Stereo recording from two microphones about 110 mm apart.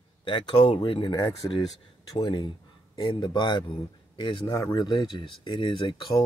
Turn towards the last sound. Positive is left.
turn(degrees=45)  # may be behind; listen again after turning